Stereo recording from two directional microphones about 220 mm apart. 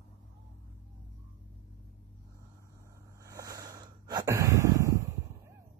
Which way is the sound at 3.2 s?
15° right (ahead or behind).